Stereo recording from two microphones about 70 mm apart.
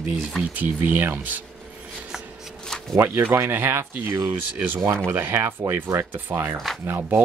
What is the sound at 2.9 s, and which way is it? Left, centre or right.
Speech, right.